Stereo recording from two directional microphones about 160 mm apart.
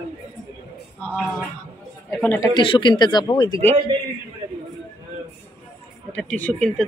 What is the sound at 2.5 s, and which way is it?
Speech, 30° left (ahead or behind).